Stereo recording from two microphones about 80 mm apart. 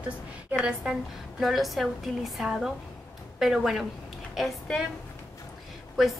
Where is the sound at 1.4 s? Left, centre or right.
Centre.